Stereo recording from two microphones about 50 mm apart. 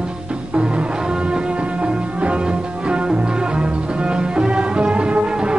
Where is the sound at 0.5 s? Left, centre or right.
Right.